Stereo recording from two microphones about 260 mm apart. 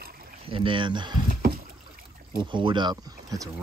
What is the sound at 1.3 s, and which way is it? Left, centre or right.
Rowboat, right.